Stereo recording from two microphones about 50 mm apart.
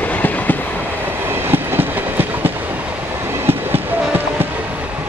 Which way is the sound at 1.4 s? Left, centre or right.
Right.